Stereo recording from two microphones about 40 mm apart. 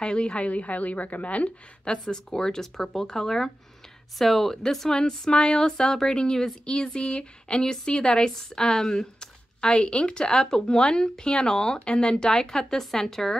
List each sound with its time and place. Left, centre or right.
0.0 s a woman's voice: left
2.0 s speech: centre
4.9 s speech: left